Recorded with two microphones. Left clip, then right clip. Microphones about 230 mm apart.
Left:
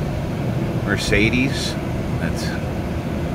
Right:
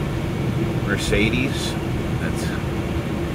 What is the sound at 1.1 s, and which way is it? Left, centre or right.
Speech, left.